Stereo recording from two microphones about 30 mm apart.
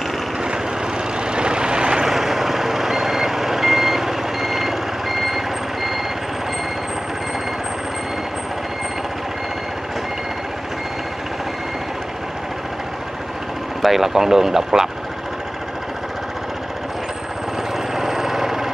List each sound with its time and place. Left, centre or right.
1.3 s vehicle: right
2.0 s reversing beeps: centre
13.8 s speech: centre
17.9 s vehicle: centre